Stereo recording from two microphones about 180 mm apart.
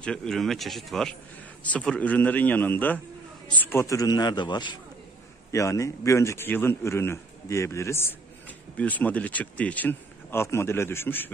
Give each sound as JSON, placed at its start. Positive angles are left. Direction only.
{"t": 0.0, "sound": "a man's voice", "side_deg": 5}